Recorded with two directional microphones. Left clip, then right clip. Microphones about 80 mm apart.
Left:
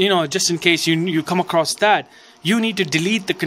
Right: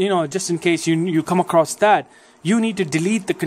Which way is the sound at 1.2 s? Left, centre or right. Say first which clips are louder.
Right 3 dB; right.